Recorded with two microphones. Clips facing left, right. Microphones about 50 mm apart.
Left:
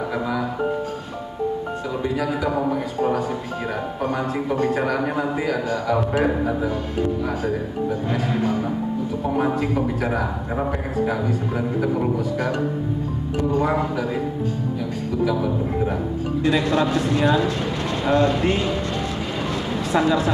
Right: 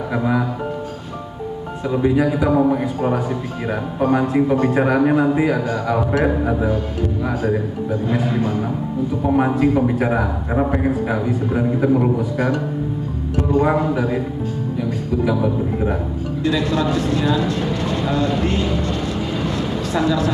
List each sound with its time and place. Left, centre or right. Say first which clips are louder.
0.1 s music: right 9 dB; centre
2.0 s a man's voice: right 8 dB; centre
9.2 s a man's voice: right 6 dB; centre
13.6 s a man's voice: right 7 dB; centre
15.2 s a man's voice: right 2 dB; centre
16.6 s speech: right 1 dB; centre
17.4 s speech: right 2 dB; centre
18.4 s speech: right 1 dB; centre
18.7 s vehicle: right 3 dB; centre
19.8 s speech: left 1 dB; centre